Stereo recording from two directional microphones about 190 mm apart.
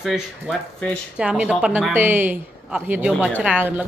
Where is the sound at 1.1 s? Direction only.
5° right (ahead or behind).